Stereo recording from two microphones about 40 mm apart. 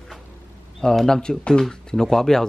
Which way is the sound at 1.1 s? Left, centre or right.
Centre.